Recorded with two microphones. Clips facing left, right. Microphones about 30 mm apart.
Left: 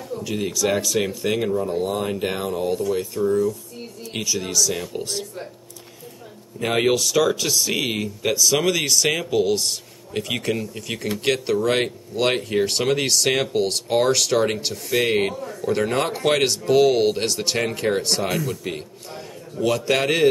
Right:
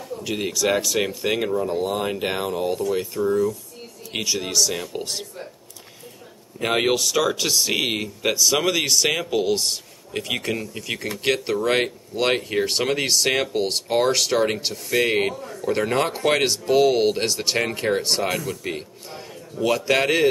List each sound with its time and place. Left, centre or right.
0.2 s speech: right
6.6 s speech: centre